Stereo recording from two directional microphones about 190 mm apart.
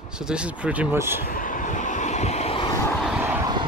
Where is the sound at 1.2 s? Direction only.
45° left (ahead or behind).